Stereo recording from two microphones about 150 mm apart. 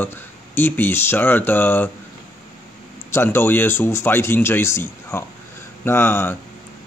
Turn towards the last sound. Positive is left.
turn(degrees=15)  # may be behind; listen again after turning